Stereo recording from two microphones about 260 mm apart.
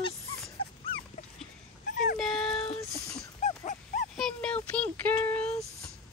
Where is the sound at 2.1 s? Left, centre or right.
Centre.